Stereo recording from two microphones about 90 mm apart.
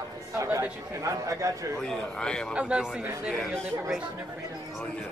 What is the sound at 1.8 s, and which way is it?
Speech, 10° left (ahead or behind).